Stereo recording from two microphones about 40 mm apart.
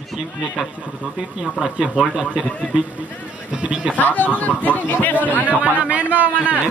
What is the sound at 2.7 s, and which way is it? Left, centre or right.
Speech, right.